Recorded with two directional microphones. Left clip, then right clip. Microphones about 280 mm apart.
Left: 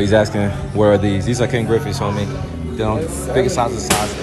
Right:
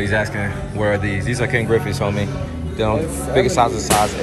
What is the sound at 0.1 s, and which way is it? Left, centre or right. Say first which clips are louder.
Speech: left 5 dB; centre.